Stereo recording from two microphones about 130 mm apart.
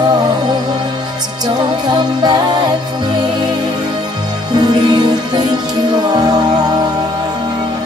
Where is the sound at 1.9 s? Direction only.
30° right (ahead or behind).